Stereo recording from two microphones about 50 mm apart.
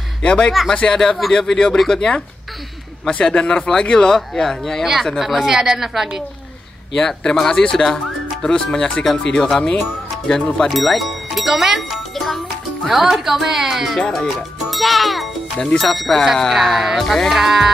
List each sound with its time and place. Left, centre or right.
0.2 s speech: left
1.2 s music: centre
1.9 s speech: centre
5.2 s speech: centre
7.0 s speech: centre
8.5 s speech: centre
13.9 s a child's voice: centre
15.8 s music: centre